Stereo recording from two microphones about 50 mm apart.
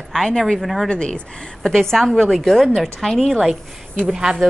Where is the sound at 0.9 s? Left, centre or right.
Centre.